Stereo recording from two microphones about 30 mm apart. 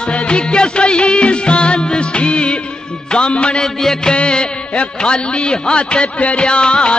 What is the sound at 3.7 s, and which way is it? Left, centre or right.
Music, centre.